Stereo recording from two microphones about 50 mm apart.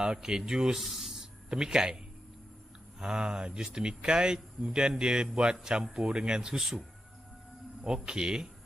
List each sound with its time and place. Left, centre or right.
0.0 s speech: centre
3.0 s speech: centre
6.6 s speech: centre
8.0 s speech: centre